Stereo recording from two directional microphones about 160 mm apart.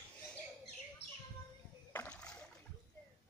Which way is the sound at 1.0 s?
90° left.